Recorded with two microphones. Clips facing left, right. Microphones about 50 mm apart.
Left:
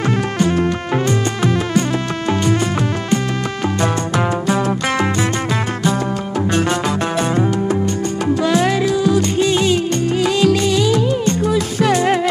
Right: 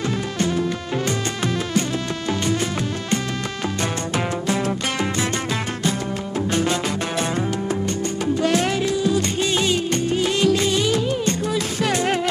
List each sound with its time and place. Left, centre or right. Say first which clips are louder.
6.5 s music: left 4 dB; left
8.5 s music: left 5 dB; left